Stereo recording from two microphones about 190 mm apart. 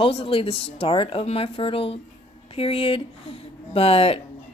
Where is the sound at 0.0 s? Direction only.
30° left (ahead or behind).